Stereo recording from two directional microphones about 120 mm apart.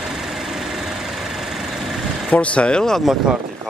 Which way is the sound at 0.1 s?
Centre (ahead or behind).